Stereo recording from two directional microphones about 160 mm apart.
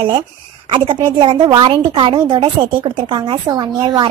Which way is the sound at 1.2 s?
30° right (ahead or behind).